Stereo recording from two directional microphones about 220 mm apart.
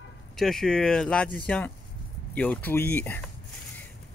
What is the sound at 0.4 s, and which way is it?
Speech, centre (ahead or behind).